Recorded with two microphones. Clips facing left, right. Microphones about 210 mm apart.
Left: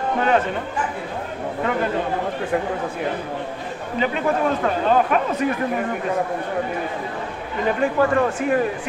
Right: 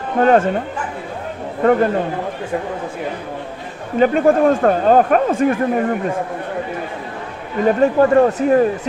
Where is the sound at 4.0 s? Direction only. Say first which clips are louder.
Right 8 dB; 45° right (ahead or behind).